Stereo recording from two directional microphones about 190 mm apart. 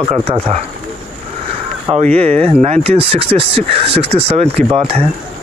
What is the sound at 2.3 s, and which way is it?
Speech, 5° left (ahead or behind).